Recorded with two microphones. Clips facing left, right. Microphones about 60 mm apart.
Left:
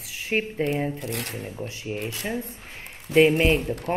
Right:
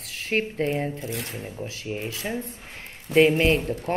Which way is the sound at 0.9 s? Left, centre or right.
Left.